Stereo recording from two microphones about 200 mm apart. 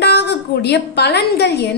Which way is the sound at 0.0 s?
55° left (ahead or behind).